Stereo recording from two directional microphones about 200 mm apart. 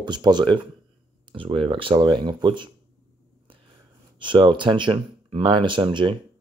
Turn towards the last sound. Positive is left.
turn(degrees=-25)  # may be behind; listen again after turning